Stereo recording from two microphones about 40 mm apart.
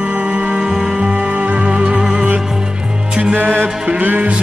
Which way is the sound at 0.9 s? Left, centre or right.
Right.